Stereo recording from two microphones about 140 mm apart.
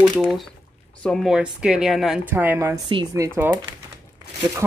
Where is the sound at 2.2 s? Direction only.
15° right (ahead or behind).